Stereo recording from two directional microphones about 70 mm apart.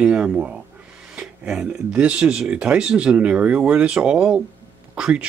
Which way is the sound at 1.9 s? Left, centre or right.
Centre.